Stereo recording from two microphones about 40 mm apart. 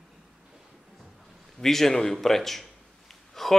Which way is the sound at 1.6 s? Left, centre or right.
Centre.